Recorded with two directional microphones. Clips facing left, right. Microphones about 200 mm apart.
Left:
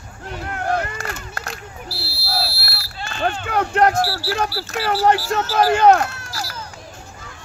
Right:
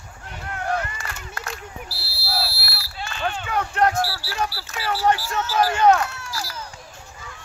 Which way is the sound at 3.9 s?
35° left (ahead or behind).